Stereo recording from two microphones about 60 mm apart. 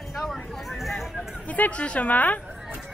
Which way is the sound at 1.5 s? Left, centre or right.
Left.